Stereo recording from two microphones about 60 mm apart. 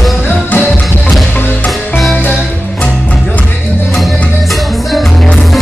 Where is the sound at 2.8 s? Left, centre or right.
Left.